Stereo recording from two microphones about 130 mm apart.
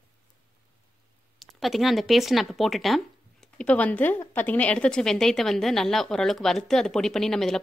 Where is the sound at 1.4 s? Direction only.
Centre (ahead or behind).